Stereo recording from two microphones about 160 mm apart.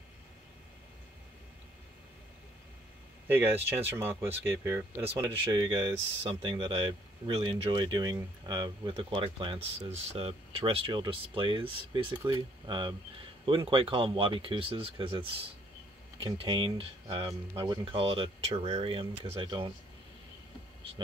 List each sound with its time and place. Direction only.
3.3 s speech: 15° right (ahead or behind)
5.4 s speech: 30° right (ahead or behind)
17.3 s speech: 20° right (ahead or behind)
17.9 s speech: 35° right (ahead or behind)